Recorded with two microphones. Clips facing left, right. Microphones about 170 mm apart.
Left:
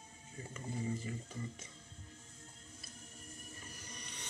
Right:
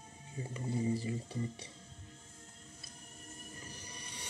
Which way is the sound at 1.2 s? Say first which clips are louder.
Right 6 dB; 35° right (ahead or behind).